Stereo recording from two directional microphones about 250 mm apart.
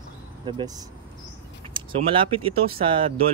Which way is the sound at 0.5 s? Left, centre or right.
Centre.